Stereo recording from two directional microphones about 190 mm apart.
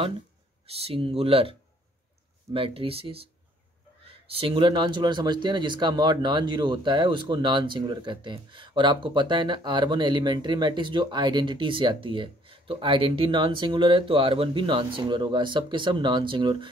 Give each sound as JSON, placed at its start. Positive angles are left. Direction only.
{"t": 0.7, "sound": "speech", "side_deg": -30}
{"t": 4.3, "sound": "speech", "side_deg": -30}